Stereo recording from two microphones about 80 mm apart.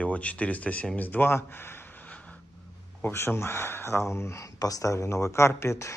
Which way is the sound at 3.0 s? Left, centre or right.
Left.